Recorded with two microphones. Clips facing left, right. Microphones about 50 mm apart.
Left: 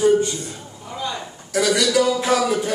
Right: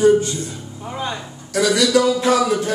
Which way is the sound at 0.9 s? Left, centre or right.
Right.